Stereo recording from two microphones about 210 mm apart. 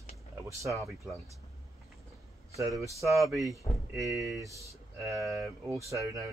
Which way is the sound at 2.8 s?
15° right (ahead or behind).